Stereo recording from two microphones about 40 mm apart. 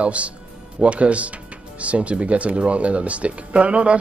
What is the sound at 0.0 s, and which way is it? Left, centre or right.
Speech, right.